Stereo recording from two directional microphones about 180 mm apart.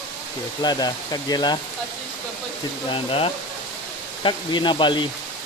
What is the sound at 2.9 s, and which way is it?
Speech, 30° left (ahead or behind).